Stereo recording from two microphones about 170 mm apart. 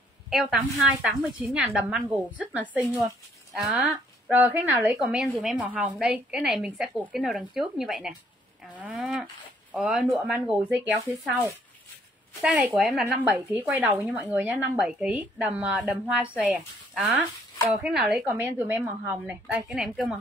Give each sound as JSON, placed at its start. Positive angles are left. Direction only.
{"t": 0.3, "sound": "a woman's voice", "side_deg": 0}
{"t": 2.9, "sound": "speech", "side_deg": -20}
{"t": 3.5, "sound": "a woman's voice", "side_deg": 0}
{"t": 4.3, "sound": "a woman's voice", "side_deg": -10}
{"t": 5.0, "sound": "a woman's voice", "side_deg": 0}
{"t": 8.7, "sound": "livestock", "side_deg": -10}
{"t": 12.4, "sound": "a woman's voice", "side_deg": -5}
{"t": 13.0, "sound": "a woman's voice", "side_deg": -10}